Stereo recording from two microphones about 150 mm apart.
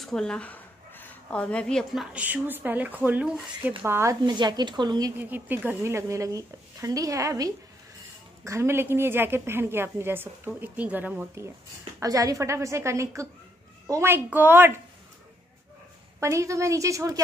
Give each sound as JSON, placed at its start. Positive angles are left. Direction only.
{"t": 0.0, "sound": "speech", "side_deg": 5}
{"t": 2.1, "sound": "a woman's voice", "side_deg": -10}
{"t": 5.1, "sound": "a woman's voice", "side_deg": -15}
{"t": 16.2, "sound": "speech", "side_deg": -20}